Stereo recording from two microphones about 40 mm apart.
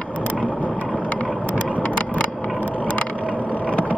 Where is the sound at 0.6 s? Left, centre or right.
Left.